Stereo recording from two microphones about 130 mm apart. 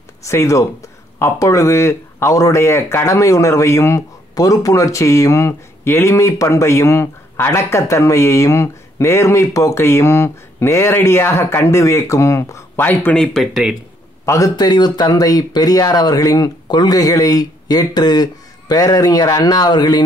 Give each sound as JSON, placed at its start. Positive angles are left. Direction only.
{"t": 0.2, "sound": "speech", "side_deg": 20}
{"t": 14.2, "sound": "speech", "side_deg": 25}